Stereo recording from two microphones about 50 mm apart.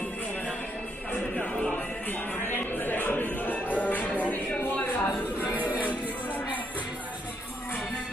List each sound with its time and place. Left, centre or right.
1.3 s music: centre
2.4 s music: left
4.7 s a sound: left